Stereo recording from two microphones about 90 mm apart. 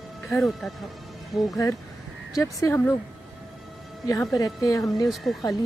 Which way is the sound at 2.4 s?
35° left (ahead or behind).